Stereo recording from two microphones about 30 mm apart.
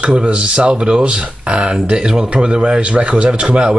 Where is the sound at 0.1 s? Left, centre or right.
Right.